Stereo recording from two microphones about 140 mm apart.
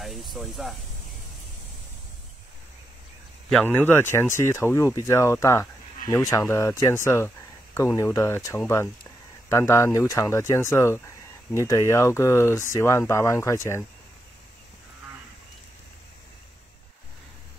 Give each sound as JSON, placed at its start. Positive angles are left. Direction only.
{"t": 0.0, "sound": "speech", "side_deg": 0}
{"t": 3.6, "sound": "speech", "side_deg": 15}